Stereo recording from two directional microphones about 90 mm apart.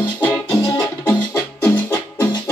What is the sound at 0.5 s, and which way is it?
Music, 45° left (ahead or behind).